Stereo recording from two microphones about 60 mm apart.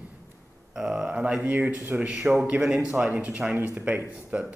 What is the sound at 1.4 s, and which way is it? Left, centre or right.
Speech, right.